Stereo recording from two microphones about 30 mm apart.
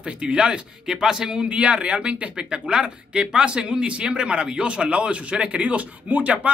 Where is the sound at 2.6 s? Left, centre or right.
Right.